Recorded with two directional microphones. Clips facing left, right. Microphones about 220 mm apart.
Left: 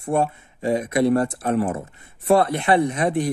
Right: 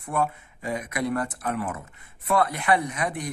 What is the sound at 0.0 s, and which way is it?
Speech, 30° left (ahead or behind).